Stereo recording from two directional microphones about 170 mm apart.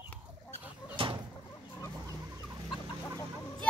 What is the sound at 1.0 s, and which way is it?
Chicken, 30° right (ahead or behind).